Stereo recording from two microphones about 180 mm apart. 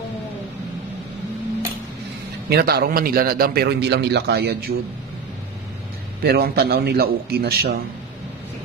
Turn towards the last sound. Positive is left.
turn(degrees=-65)  # may be behind; listen again after turning